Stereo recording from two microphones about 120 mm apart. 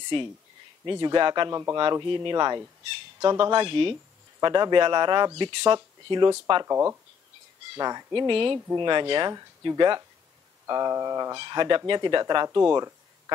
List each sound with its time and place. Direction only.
0.8 s speech: 35° right (ahead or behind)
6.6 s speech: 25° right (ahead or behind)
12.6 s speech: 25° right (ahead or behind)